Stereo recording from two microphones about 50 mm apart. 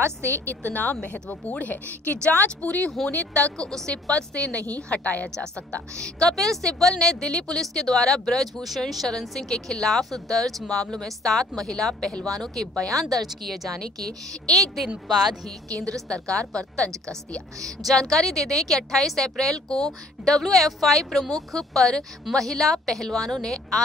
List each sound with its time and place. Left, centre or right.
0.0 s a woman's voice: right
0.7 s a woman's voice: left
3.5 s a woman's voice: centre; by 5.3 s left
5.9 s a woman's voice: centre
15.0 s speech: centre
16.1 s a woman's voice: centre